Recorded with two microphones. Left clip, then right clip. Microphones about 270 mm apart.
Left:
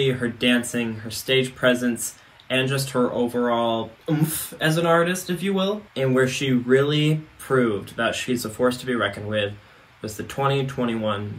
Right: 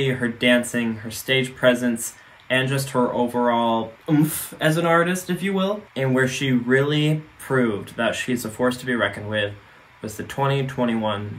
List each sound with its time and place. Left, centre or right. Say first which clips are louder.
0.2 s speech: right 3 dB; centre